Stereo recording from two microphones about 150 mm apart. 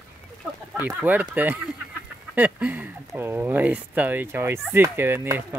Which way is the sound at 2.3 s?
10° right (ahead or behind).